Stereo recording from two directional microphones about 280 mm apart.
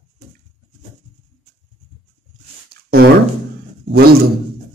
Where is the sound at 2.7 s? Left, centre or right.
Right.